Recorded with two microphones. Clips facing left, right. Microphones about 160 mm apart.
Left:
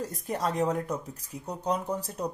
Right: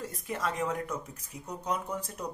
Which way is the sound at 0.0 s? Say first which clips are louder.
Left 4 dB; 35° left (ahead or behind).